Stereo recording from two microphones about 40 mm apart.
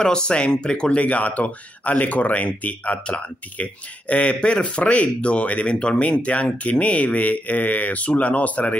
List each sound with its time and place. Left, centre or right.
0.0 s speech: left
3.1 s speech: left